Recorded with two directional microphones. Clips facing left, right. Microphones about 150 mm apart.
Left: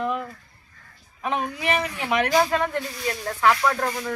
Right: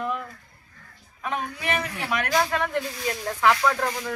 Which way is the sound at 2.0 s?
15° left (ahead or behind).